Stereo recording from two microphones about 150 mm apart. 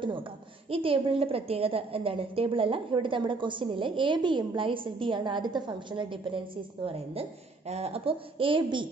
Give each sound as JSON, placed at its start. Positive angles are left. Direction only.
{"t": 0.7, "sound": "a woman's voice", "side_deg": -35}